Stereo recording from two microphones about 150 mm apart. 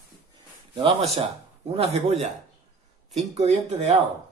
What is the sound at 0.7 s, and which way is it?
Speech, 35° right (ahead or behind).